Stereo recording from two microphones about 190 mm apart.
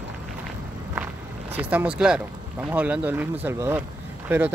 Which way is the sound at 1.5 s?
10° right (ahead or behind).